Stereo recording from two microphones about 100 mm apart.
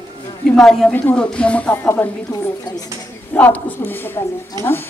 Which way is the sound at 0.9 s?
15° left (ahead or behind).